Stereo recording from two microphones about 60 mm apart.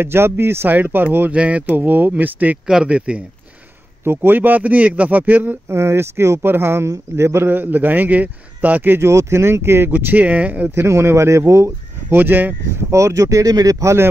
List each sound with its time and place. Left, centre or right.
0.0 s a man's voice: right
0.7 s a man's voice: right
1.3 s speech: right
2.6 s speech: centre
4.0 s speech: right
5.7 s a man's voice: right
7.4 s a man's voice: right
8.9 s speech: right
9.8 s speech: right
10.7 s speech: right
12.1 s a man's voice: right
12.9 s speech: right